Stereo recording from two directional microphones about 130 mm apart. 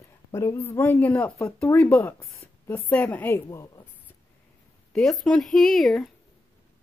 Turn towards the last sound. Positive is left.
turn(degrees=0)  # may be behind; listen again after turning